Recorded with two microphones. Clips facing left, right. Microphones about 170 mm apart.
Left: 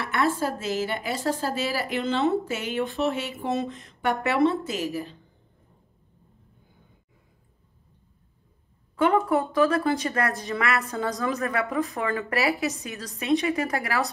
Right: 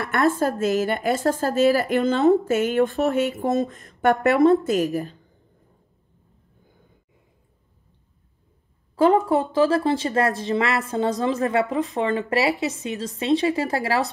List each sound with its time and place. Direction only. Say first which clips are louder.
0.0 s a woman's voice: right 4 dB; 50° right (ahead or behind)
8.9 s a woman's voice: right 4 dB; 35° right (ahead or behind)